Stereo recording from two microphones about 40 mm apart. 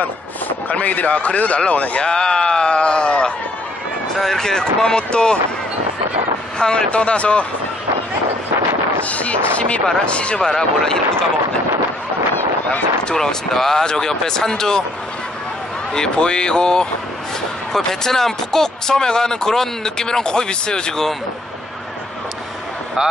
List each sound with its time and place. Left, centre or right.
0.5 s speech: left
2.0 s speech: centre
4.2 s speech: centre
6.6 s speech: left
9.1 s speech: left
10.4 s speech: centre
13.1 s speech: centre
15.9 s speech: centre
17.7 s speech: centre